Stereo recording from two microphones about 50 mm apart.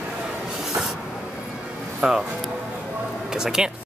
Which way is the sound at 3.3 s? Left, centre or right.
Centre.